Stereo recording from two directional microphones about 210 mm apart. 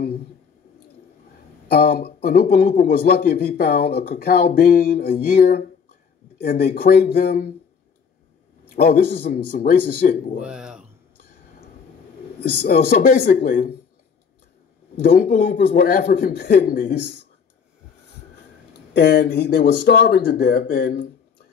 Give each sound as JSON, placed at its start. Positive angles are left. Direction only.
{"t": 1.7, "sound": "speech", "side_deg": 45}
{"t": 8.7, "sound": "speech", "side_deg": 45}
{"t": 10.4, "sound": "speech", "side_deg": -5}
{"t": 12.4, "sound": "speech", "side_deg": 45}
{"t": 15.0, "sound": "speech", "side_deg": 45}
{"t": 18.9, "sound": "speech", "side_deg": 50}